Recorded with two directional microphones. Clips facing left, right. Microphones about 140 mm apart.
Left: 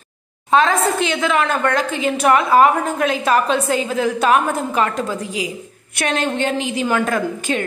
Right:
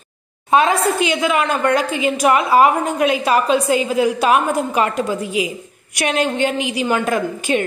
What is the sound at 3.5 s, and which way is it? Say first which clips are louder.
Speech: right 3 dB; 55° left (ahead or behind).